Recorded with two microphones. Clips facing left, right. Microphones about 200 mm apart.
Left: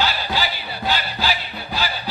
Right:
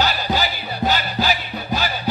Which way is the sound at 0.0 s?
45° right (ahead or behind).